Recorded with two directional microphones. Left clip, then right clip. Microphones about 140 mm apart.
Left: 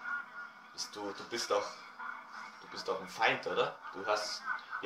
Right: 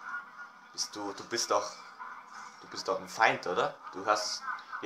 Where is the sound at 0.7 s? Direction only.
80° right.